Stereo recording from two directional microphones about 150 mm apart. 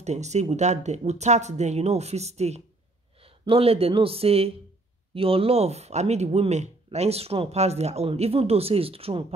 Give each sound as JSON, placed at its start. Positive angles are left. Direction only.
{"t": 0.0, "sound": "speech", "side_deg": -50}